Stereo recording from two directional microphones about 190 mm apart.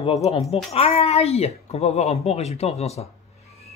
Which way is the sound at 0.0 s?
30° left (ahead or behind).